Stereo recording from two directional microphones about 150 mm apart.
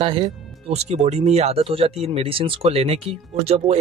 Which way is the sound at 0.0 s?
35° right (ahead or behind).